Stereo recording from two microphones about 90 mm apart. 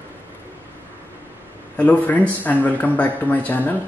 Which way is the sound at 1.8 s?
15° left (ahead or behind).